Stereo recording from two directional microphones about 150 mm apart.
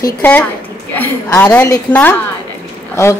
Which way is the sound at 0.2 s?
10° left (ahead or behind).